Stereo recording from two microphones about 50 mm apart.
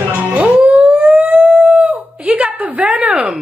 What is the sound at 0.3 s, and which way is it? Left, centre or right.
Howl, right.